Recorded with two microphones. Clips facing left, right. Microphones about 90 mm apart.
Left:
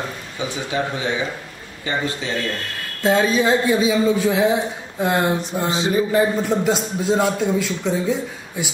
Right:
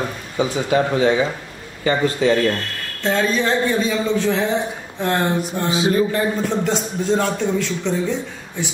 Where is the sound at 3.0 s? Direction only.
10° left (ahead or behind).